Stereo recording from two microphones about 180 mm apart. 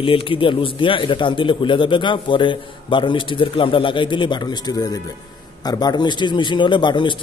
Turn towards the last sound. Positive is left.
turn(degrees=25)  # may be behind; listen again after turning